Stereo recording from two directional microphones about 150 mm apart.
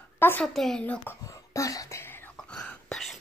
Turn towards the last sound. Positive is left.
turn(degrees=5)  # may be behind; listen again after turning